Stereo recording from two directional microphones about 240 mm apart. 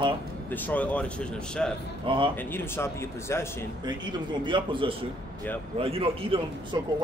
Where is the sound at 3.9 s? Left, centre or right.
Centre.